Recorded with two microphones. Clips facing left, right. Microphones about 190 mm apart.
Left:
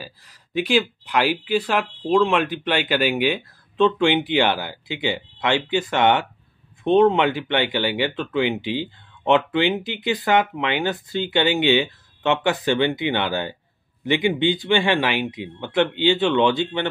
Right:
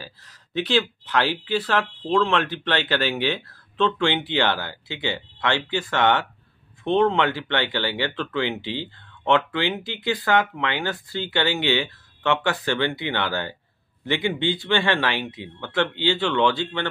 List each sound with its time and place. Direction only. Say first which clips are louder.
0.0 s speech: left 2 dB; 10° left (ahead or behind)